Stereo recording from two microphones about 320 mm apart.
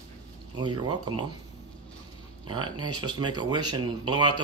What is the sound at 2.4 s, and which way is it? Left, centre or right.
Speech, centre.